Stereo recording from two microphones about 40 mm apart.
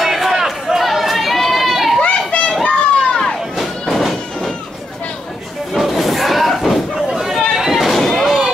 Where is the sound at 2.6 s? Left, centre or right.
Left.